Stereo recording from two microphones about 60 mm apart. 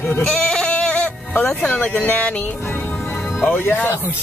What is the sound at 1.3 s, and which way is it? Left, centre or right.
Speech, left.